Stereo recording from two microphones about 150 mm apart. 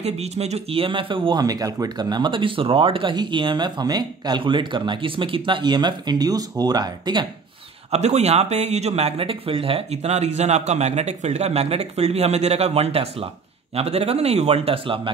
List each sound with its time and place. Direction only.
0.0 s speech: 45° right (ahead or behind); by 7.2 s 30° right (ahead or behind)
7.9 s speech: 45° right (ahead or behind)